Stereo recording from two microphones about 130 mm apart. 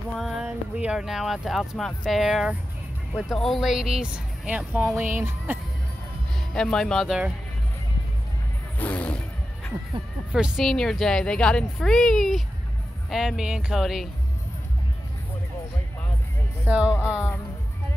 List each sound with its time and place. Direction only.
0.1 s speech: centre (ahead or behind)
6.5 s speech: 5° left (ahead or behind)
8.7 s music: 10° left (ahead or behind)
10.3 s speech: 5° right (ahead or behind)
16.6 s speech: 10° right (ahead or behind)